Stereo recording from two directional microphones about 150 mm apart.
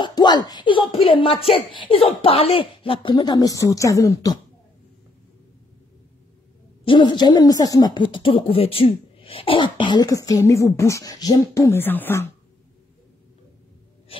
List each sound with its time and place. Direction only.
0.0 s speech: 30° left (ahead or behind)
6.8 s speech: 35° left (ahead or behind); by 12.3 s 15° left (ahead or behind)